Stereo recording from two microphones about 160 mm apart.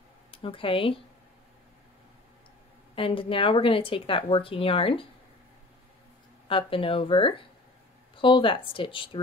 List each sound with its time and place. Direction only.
0.3 s speech: 35° left (ahead or behind)
3.0 s speech: 35° left (ahead or behind)
6.4 s speech: 35° left (ahead or behind)